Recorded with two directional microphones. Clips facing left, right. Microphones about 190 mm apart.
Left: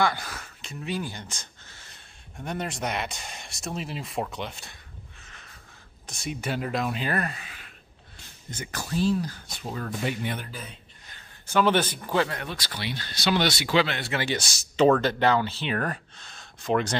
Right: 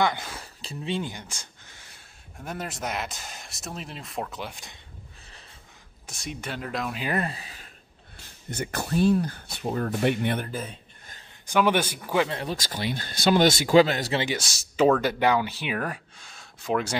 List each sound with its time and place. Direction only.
0.0 s speech: 20° right (ahead or behind)
1.1 s speech: 10° right (ahead or behind)
6.2 s speech: 5° left (ahead or behind)
7.1 s speech: 25° right (ahead or behind)
8.5 s speech: 60° right (ahead or behind)
11.4 s speech: 15° right (ahead or behind)
12.3 s speech: 30° right (ahead or behind)
12.6 s speech: 45° right (ahead or behind)
14.3 s speech: 5° right (ahead or behind)